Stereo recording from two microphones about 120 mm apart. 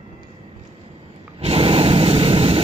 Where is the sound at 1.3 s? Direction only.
55° right (ahead or behind).